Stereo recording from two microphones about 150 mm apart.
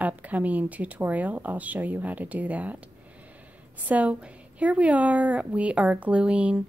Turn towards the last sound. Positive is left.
turn(degrees=-10)  # may be behind; listen again after turning